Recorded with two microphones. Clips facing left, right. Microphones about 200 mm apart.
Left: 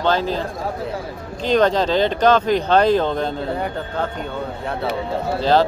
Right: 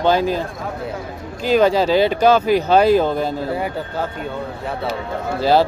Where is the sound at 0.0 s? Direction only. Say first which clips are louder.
Right 3 dB; 10° right (ahead or behind).